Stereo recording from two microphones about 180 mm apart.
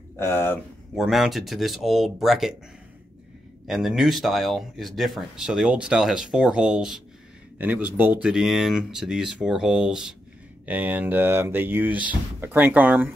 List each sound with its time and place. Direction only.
0.2 s speech: 10° left (ahead or behind)
0.9 s speech: centre (ahead or behind)
3.6 s speech: centre (ahead or behind)